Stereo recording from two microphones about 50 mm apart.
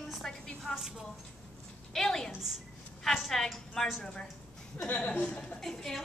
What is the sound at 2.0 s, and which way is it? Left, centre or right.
A woman's voice, centre.